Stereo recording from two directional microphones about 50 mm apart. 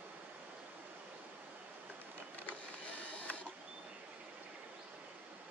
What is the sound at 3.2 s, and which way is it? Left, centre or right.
Printer, left.